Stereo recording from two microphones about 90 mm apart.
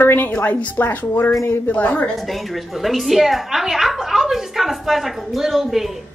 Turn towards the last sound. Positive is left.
turn(degrees=0)  # may be behind; listen again after turning